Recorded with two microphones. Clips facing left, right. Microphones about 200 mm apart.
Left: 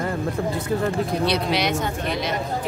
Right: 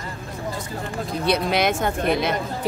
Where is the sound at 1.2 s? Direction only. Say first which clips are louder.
Right 5 dB; 50° right (ahead or behind).